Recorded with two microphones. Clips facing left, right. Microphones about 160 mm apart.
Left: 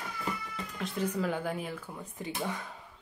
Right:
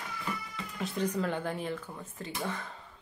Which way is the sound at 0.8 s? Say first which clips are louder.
Right 1 dB; centre (ahead or behind).